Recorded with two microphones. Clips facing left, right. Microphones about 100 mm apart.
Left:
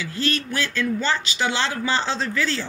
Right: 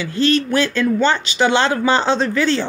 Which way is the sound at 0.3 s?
75° right (ahead or behind).